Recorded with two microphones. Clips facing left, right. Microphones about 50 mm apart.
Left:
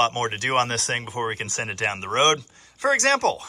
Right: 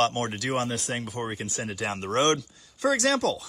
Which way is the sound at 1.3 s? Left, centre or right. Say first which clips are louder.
Left 4 dB; left.